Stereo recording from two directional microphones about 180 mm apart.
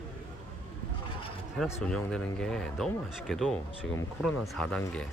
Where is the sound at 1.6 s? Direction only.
5° left (ahead or behind).